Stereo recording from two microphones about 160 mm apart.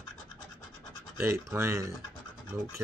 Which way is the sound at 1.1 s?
15° right (ahead or behind).